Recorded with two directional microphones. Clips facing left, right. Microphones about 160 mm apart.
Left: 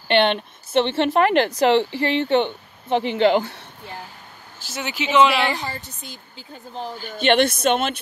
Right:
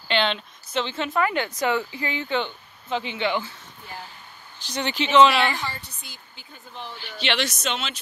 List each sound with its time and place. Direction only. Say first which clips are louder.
0.1 s speech: left 6 dB; 55° left (ahead or behind)
4.6 s speech: even; 5° left (ahead or behind)
5.6 s speech: left 2 dB; 45° left (ahead or behind)